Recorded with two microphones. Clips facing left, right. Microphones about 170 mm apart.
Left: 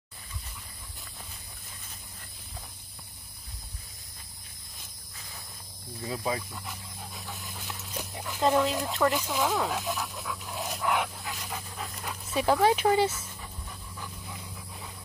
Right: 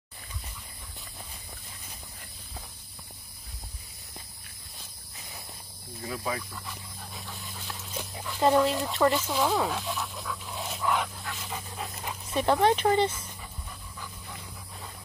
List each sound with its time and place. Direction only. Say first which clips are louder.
6.0 s speech: left 2 dB; 25° left (ahead or behind)
7.2 s dog: even; centre (ahead or behind)
8.4 s speech: right 2 dB; centre (ahead or behind)
10.9 s dog: even; 10° left (ahead or behind)
11.3 s dog: right 1 dB; centre (ahead or behind)
11.8 s speech: right 2 dB; 20° right (ahead or behind)
12.4 s speech: even; 5° left (ahead or behind)